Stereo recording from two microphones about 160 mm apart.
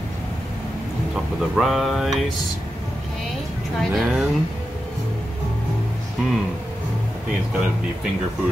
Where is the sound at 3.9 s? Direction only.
Centre (ahead or behind).